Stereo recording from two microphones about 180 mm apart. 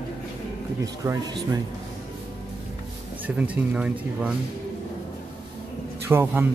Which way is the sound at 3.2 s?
10° right (ahead or behind).